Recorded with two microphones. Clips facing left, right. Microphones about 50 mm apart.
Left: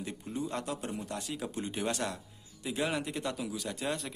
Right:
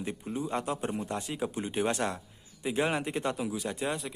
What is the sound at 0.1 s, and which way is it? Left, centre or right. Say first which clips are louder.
Speech: right 4 dB; centre.